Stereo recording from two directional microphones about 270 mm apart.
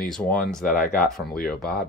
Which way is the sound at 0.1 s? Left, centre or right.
Centre.